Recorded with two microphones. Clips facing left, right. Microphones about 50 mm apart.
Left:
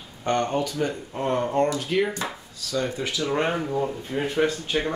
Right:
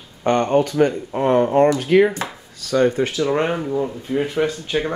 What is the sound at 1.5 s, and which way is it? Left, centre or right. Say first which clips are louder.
Speech: right 8 dB; right.